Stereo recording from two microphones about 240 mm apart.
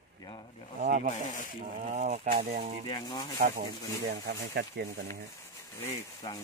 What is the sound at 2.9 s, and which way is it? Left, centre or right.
Speech, centre.